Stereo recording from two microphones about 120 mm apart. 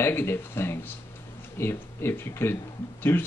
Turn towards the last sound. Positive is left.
turn(degrees=20)  # may be behind; listen again after turning